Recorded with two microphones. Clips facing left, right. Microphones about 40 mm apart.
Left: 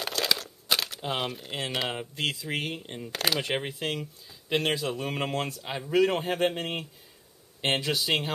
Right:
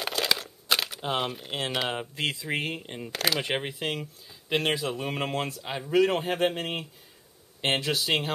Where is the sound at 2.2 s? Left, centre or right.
Right.